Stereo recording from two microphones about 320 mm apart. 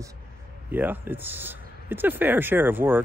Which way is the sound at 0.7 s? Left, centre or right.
Centre.